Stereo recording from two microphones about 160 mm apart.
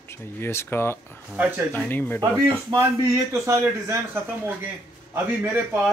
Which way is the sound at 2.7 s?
30° right (ahead or behind).